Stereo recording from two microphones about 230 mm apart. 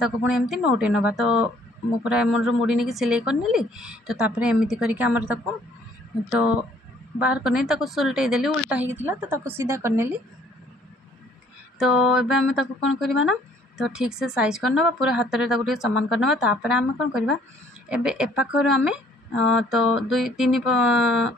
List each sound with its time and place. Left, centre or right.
0.0 s speech: centre
7.2 s a woman's voice: centre
11.8 s speech: centre